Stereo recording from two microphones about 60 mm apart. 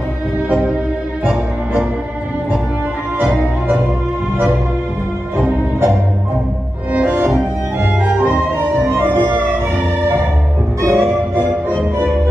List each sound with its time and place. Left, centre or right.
0.5 s music: centre
6.9 s music: right
8.8 s music: right
10.9 s music: right